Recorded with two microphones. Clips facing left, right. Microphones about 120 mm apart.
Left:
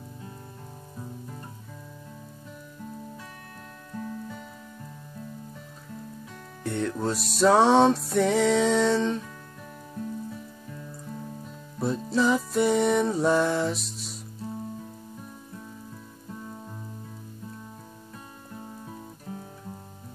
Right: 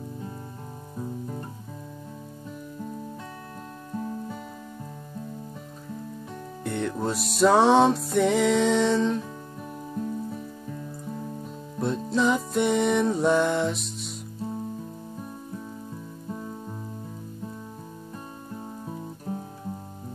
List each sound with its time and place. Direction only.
3.9 s music: 25° right (ahead or behind)
6.6 s music: centre (ahead or behind)
9.9 s music: 35° right (ahead or behind)
11.8 s music: centre (ahead or behind)